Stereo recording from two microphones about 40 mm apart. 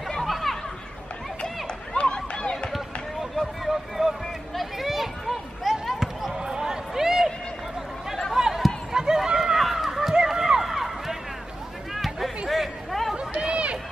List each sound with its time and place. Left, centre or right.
0.3 s chatter: centre
2.0 s run: left
3.6 s a sound: centre
4.6 s basketball bounce: centre
6.3 s a sound: centre
8.3 s basketball bounce: centre
8.9 s run: centre
11.9 s a sound: centre
13.1 s run: right